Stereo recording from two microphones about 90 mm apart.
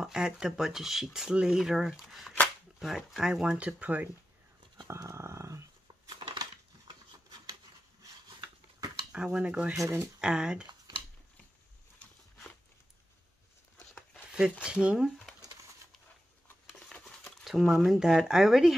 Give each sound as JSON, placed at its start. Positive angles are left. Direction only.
{"t": 0.0, "sound": "speech", "side_deg": -5}
{"t": 4.8, "sound": "dog", "side_deg": -30}
{"t": 6.3, "sound": "a sound", "side_deg": -50}
{"t": 9.1, "sound": "speech", "side_deg": -15}
{"t": 9.8, "sound": "speech", "side_deg": -30}
{"t": 10.2, "sound": "speech", "side_deg": -10}
{"t": 14.6, "sound": "speech", "side_deg": -10}
{"t": 16.9, "sound": "patter", "side_deg": 10}
{"t": 17.4, "sound": "speech", "side_deg": 0}